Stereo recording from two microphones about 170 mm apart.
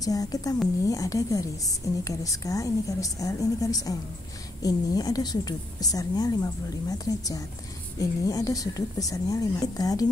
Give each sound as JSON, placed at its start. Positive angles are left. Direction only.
{"t": 0.0, "sound": "a woman's voice", "side_deg": 20}